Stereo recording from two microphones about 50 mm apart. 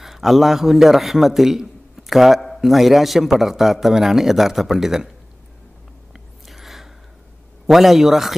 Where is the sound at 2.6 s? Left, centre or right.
Centre.